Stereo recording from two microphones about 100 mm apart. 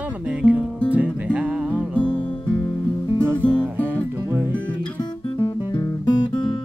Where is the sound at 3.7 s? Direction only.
20° right (ahead or behind).